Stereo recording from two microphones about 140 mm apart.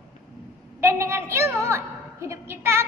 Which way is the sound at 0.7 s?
20° right (ahead or behind).